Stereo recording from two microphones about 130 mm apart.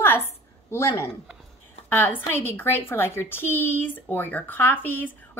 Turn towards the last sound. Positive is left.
turn(degrees=15)  # may be behind; listen again after turning